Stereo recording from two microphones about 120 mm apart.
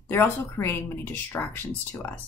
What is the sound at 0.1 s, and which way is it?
Speech, 20° left (ahead or behind).